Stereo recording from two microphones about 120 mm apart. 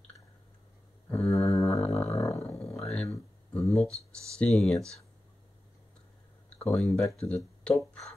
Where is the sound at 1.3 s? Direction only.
25° left (ahead or behind).